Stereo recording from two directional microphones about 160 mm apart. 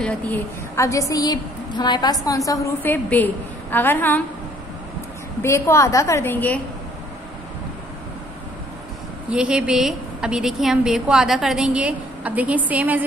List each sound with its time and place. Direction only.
0.0 s a woman's voice: 15° left (ahead or behind)
5.4 s a woman's voice: 15° left (ahead or behind)
9.3 s a woman's voice: 5° right (ahead or behind)